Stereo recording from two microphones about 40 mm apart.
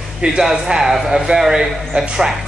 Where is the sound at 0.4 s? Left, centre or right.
Centre.